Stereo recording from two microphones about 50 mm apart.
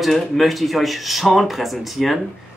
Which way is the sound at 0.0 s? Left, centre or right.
Centre.